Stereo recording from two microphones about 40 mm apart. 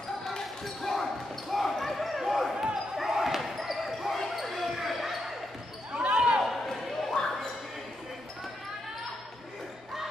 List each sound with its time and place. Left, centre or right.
0.3 s basketball bounce: centre
5.9 s basketball bounce: right
6.4 s a sound: centre